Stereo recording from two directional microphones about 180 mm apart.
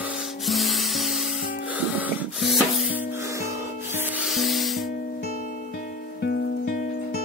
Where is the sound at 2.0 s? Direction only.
Centre (ahead or behind).